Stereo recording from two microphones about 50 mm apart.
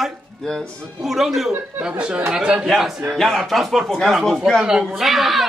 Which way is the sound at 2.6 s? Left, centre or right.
Centre.